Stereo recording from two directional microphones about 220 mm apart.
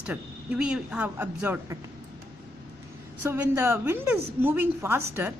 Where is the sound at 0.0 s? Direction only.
5° right (ahead or behind).